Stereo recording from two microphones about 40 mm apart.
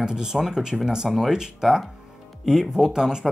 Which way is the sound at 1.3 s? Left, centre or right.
Centre.